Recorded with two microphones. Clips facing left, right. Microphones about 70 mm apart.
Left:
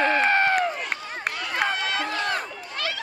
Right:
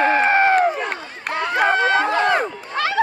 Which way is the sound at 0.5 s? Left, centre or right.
Right.